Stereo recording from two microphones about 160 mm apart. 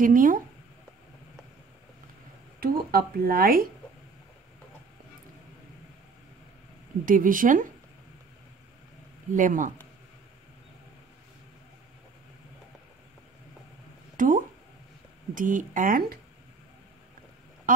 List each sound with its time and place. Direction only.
0.0 s speech: 55° right (ahead or behind)
2.6 s speech: 70° right (ahead or behind)
7.1 s speech: 55° right (ahead or behind)
9.3 s speech: 55° right (ahead or behind)
14.1 s speech: 55° right (ahead or behind)
17.7 s a sound: 55° right (ahead or behind)